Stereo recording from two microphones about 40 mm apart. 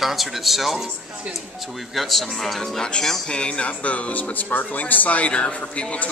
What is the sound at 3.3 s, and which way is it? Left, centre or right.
Speech, left.